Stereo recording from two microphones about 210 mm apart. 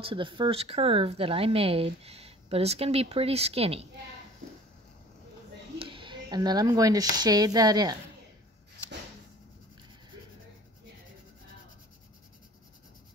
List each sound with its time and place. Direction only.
0.0 s speech: 25° right (ahead or behind)
5.8 s speech: 25° right (ahead or behind)